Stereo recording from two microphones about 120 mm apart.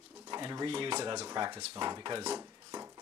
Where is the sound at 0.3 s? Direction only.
35° right (ahead or behind).